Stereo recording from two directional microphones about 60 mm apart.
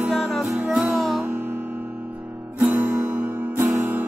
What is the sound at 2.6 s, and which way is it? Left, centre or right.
Guitar, right.